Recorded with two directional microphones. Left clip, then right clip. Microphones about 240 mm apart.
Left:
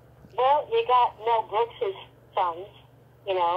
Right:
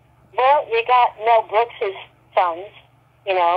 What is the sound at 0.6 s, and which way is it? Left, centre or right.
Speech, centre.